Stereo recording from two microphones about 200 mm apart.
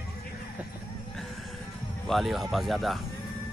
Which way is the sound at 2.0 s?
Centre (ahead or behind).